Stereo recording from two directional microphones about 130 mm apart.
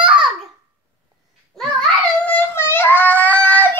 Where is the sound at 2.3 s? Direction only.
15° left (ahead or behind).